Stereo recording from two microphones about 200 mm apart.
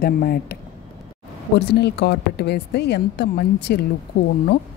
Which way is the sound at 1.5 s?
55° left (ahead or behind).